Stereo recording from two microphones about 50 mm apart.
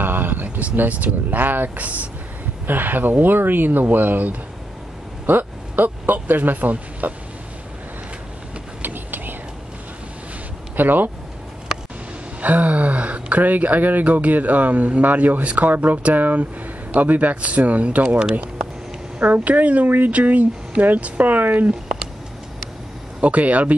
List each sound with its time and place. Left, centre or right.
0.0 s a sound: right
0.7 s speech: right
2.6 s speech: right
8.8 s vehicle: right
10.8 s speech: right
12.4 s speech: right
19.1 s speech: right
23.2 s speech: right